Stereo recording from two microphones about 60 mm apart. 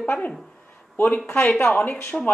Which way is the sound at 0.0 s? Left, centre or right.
Left.